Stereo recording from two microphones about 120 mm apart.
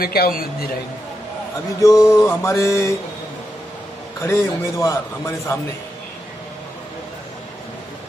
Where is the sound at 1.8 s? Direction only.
25° left (ahead or behind).